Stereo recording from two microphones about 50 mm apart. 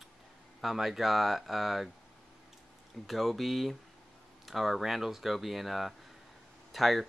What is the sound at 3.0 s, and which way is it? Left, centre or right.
Speech, centre.